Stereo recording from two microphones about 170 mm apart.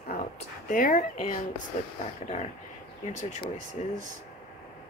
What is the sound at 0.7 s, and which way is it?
Speech, 55° left (ahead or behind).